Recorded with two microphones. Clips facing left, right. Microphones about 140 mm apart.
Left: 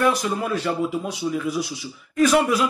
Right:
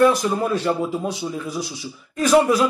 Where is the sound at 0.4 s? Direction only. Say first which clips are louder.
Right 2 dB; 35° right (ahead or behind).